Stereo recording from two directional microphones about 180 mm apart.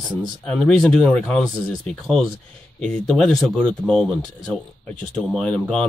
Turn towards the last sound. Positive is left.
turn(degrees=5)  # may be behind; listen again after turning